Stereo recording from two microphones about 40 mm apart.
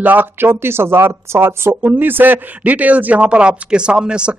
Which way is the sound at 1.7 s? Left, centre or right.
Right.